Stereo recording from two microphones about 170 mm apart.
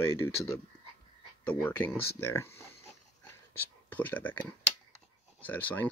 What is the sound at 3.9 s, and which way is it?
Speech, 10° left (ahead or behind).